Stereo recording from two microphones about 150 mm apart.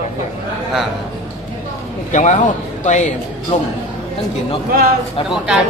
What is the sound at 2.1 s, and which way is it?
A man's voice, 55° left (ahead or behind).